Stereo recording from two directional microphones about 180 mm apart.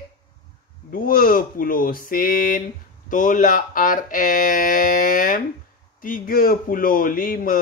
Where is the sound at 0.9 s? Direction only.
50° left (ahead or behind).